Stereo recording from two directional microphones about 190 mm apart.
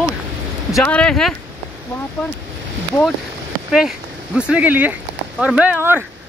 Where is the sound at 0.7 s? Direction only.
15° left (ahead or behind).